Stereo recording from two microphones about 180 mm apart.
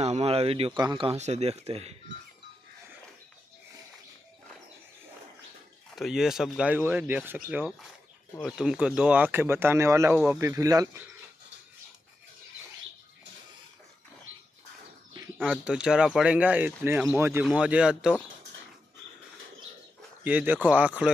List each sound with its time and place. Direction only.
0.0 s speech: 35° right (ahead or behind)
5.9 s speech: centre (ahead or behind); by 11.1 s 20° right (ahead or behind)
15.3 s speech: centre (ahead or behind)
20.2 s speech: 10° right (ahead or behind)